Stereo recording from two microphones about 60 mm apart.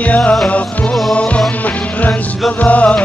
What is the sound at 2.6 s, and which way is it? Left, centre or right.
Music, left.